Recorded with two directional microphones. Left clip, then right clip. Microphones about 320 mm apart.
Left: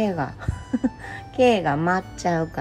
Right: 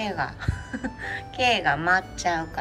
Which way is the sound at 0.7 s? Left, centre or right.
Centre.